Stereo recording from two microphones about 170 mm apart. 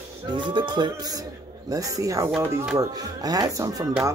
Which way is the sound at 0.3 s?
25° right (ahead or behind).